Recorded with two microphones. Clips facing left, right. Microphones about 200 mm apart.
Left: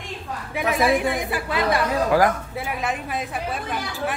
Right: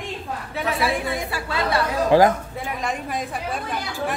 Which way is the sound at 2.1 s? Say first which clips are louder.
Right 5 dB; 25° right (ahead or behind).